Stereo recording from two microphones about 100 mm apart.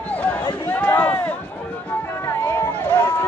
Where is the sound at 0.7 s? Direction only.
15° left (ahead or behind).